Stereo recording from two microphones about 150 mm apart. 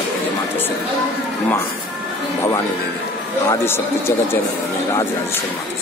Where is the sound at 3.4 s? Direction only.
15° left (ahead or behind).